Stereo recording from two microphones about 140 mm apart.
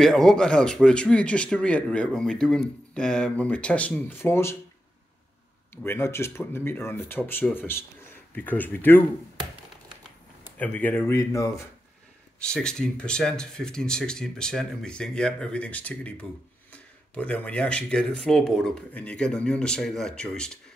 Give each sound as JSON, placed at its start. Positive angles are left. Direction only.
{"t": 0.0, "sound": "speech", "side_deg": 5}
{"t": 5.9, "sound": "speech", "side_deg": 15}
{"t": 10.6, "sound": "speech", "side_deg": 10}
{"t": 12.4, "sound": "speech", "side_deg": 5}